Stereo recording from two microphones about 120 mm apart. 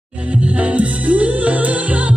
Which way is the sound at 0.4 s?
10° right (ahead or behind).